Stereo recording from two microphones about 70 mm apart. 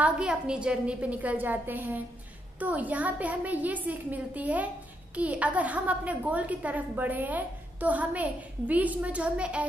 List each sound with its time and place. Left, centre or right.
0.0 s a woman's voice: centre